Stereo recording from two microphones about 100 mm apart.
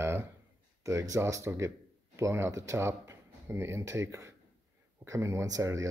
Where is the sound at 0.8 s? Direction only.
30° right (ahead or behind).